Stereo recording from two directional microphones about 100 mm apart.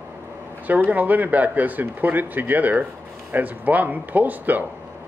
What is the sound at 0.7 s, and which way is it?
Speech, 15° right (ahead or behind).